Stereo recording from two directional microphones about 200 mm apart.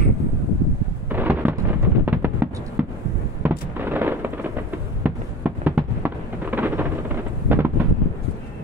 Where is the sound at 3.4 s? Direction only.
10° right (ahead or behind).